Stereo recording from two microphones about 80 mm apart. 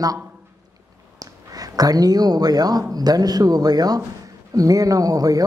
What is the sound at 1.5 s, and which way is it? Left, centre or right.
A man's voice, right.